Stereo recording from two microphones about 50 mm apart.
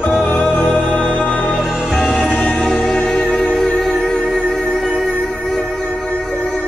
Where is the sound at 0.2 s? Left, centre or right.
Left.